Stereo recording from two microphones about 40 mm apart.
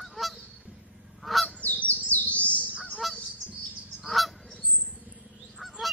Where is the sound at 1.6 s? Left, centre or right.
Left.